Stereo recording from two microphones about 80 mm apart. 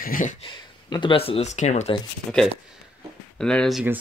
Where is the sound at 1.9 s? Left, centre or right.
Left.